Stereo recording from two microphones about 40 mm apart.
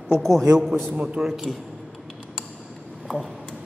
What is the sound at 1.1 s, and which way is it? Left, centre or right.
Speech, centre.